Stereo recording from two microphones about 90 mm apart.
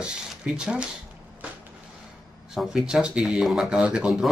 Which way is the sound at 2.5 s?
5° right (ahead or behind).